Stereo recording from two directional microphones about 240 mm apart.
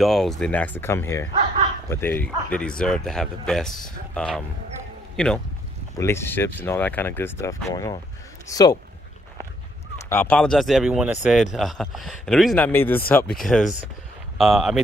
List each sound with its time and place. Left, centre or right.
0.0 s a man's voice: centre
10.0 s speech: centre